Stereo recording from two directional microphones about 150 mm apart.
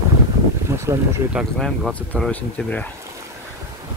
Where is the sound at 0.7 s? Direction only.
20° right (ahead or behind).